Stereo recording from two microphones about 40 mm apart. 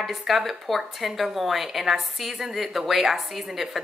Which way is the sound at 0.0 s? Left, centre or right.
Centre.